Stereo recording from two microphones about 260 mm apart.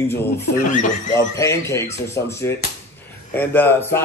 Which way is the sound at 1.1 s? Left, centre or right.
Centre.